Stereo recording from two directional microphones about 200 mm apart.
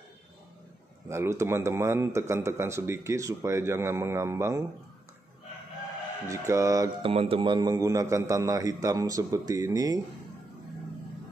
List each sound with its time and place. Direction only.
1.0 s a man's voice: 15° right (ahead or behind)
6.2 s a man's voice: 15° right (ahead or behind)